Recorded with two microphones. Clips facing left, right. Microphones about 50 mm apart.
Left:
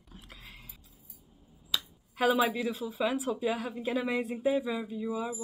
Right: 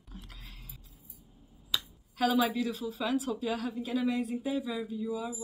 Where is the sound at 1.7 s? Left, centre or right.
Centre.